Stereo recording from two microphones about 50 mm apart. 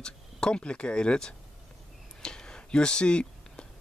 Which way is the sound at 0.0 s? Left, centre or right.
Centre.